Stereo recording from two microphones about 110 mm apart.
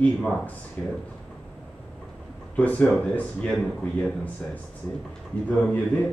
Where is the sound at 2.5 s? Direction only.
15° left (ahead or behind).